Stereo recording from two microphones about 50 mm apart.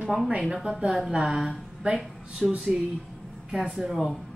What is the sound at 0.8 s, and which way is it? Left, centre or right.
Speech, centre.